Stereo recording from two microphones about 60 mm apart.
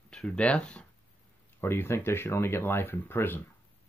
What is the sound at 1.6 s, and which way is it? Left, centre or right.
Speech, left.